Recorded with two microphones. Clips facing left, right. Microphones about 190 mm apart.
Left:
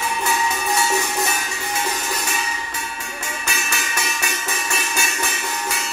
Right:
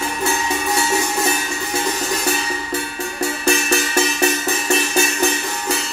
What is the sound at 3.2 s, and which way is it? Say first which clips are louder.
Music: right 12 dB; 35° right (ahead or behind).